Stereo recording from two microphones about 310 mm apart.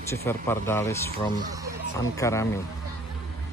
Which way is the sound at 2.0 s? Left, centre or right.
Centre.